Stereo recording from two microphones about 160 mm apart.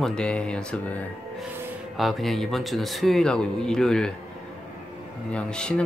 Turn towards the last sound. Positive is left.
turn(degrees=5)  # may be behind; listen again after turning